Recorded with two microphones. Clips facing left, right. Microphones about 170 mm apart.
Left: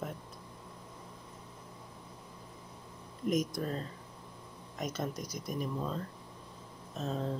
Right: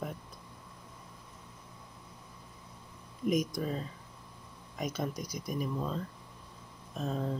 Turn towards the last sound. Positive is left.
turn(degrees=-5)  # may be behind; listen again after turning